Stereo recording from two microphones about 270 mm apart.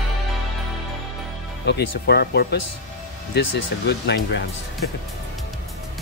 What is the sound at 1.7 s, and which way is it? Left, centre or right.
Speech, left.